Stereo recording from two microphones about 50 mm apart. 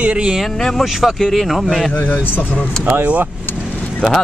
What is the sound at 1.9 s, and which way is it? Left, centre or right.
Speech, left.